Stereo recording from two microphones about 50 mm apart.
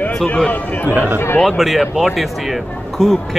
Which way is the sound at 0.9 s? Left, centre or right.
Right.